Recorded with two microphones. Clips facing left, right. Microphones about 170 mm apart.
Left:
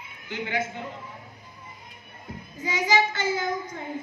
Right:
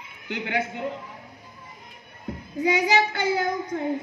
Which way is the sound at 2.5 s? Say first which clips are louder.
Right 3 dB; 65° right (ahead or behind).